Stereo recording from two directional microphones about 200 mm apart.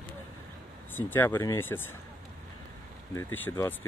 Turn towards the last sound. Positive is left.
turn(degrees=10)  # may be behind; listen again after turning